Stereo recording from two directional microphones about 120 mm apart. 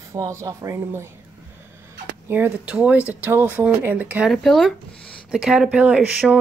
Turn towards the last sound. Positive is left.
turn(degrees=-10)  # may be behind; listen again after turning